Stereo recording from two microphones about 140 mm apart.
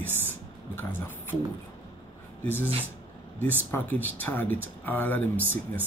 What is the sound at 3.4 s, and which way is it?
Speech, 15° left (ahead or behind).